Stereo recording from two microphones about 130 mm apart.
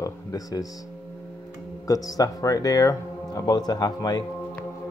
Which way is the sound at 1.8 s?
30° left (ahead or behind).